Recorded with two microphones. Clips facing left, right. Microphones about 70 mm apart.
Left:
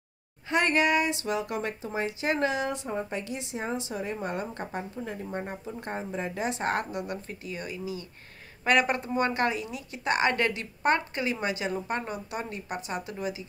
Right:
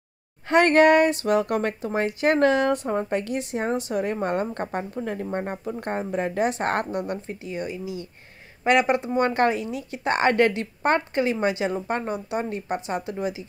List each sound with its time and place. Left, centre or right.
0.5 s speech: right
7.2 s speech: right
9.2 s a woman's voice: right